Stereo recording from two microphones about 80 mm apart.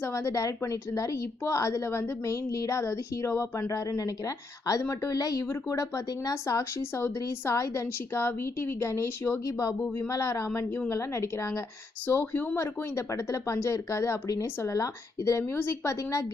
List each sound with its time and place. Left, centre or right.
0.0 s a woman's voice: left
12.1 s speech: left
12.5 s a woman's voice: left